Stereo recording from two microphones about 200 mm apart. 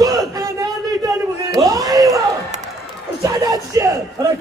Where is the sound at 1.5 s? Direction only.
15° right (ahead or behind).